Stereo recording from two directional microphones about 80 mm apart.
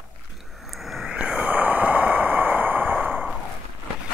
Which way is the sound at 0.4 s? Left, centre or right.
Centre.